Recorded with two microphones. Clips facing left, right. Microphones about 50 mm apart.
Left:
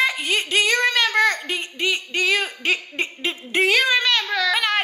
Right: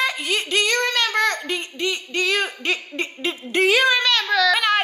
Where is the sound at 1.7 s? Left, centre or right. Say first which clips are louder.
Left 1 dB; centre.